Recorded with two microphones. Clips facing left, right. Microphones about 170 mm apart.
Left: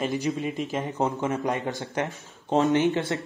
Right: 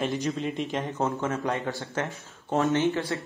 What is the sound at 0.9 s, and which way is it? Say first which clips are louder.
A man's voice: left 3 dB; 15° left (ahead or behind).